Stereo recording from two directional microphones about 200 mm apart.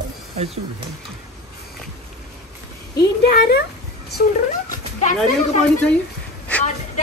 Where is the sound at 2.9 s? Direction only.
50° left (ahead or behind).